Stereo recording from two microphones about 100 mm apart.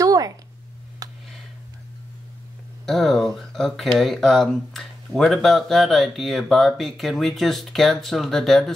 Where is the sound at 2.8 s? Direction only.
5° left (ahead or behind).